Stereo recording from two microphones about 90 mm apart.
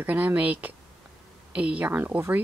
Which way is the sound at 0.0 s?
20° right (ahead or behind).